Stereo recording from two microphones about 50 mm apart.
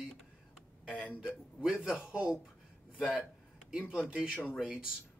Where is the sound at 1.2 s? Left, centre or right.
Centre.